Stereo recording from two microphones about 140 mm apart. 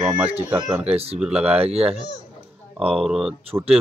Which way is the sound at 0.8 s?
45° right (ahead or behind).